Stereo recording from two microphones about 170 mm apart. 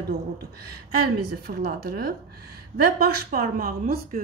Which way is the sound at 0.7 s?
65° right (ahead or behind).